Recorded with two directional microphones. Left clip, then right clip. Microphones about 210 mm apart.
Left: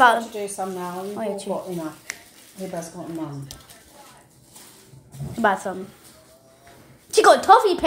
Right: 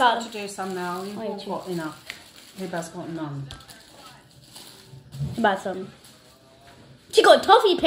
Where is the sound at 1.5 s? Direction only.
40° right (ahead or behind).